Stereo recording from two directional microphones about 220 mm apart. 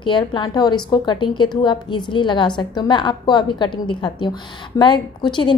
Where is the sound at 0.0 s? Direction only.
20° left (ahead or behind).